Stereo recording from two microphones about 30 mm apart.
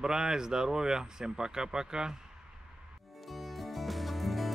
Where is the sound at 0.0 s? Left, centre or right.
Right.